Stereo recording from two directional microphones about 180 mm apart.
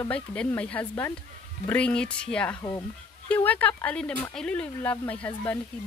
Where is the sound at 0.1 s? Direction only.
5° left (ahead or behind).